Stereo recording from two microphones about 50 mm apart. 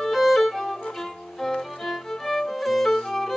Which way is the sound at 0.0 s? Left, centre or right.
Centre.